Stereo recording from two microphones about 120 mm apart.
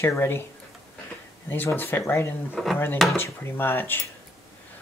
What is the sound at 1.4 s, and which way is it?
Speech, 15° left (ahead or behind).